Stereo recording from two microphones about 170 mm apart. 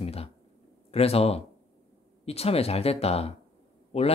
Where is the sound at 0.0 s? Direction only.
35° left (ahead or behind).